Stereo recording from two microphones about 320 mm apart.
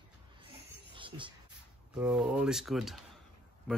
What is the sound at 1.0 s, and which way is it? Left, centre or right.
Music, centre.